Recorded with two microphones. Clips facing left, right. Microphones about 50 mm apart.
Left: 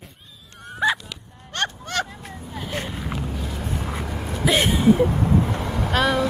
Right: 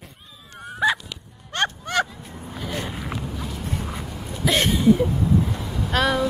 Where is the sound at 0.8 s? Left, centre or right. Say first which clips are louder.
Even; centre.